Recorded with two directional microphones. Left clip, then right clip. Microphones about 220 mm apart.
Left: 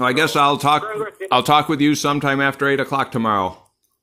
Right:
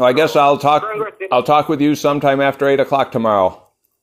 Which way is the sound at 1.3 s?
30° left (ahead or behind).